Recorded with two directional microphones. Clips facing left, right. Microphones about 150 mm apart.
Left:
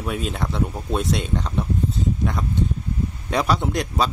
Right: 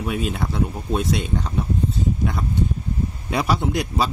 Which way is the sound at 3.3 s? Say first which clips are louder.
Even; 5° right (ahead or behind).